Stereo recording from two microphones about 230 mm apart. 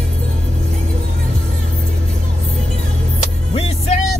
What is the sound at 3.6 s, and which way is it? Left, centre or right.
Music, left.